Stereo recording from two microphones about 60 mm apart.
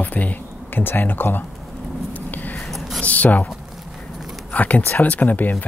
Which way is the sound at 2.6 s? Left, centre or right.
Centre.